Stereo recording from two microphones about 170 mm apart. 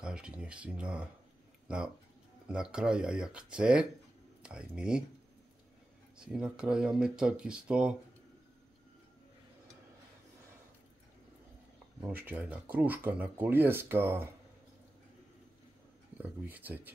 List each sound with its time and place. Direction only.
0.0 s speech: 5° right (ahead or behind)
2.4 s speech: 5° right (ahead or behind)
6.1 s speech: 5° right (ahead or behind)
12.3 s speech: 10° right (ahead or behind)
16.2 s speech: 10° right (ahead or behind)